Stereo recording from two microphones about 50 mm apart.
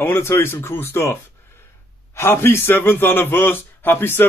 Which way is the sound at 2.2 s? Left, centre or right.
Left.